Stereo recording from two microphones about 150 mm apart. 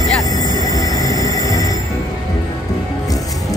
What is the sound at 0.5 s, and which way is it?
Music, 25° left (ahead or behind).